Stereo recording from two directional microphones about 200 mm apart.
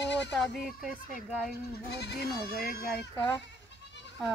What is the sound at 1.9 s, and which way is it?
Speech, 55° left (ahead or behind).